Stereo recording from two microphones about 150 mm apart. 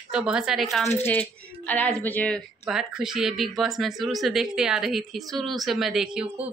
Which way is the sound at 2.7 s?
5° right (ahead or behind).